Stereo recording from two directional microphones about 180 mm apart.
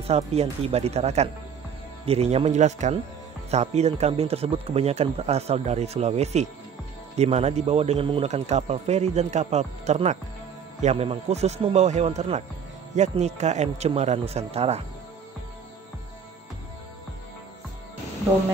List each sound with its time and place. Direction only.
0.0 s speech: 35° right (ahead or behind)